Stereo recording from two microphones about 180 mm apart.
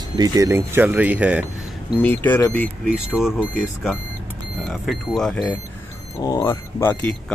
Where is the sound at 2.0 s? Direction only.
10° left (ahead or behind).